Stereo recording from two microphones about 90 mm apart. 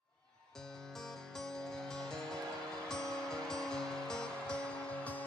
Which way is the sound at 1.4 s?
5° left (ahead or behind).